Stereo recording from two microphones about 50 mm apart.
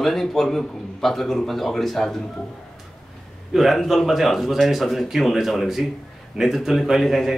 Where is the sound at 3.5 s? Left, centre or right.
Centre.